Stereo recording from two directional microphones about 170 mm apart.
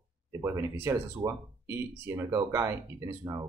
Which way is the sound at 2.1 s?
15° right (ahead or behind).